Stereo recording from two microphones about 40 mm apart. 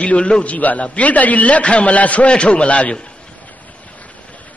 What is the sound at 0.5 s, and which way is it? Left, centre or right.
A man's voice, left.